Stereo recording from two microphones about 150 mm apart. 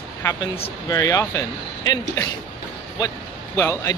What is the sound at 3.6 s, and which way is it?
Speech, 20° left (ahead or behind).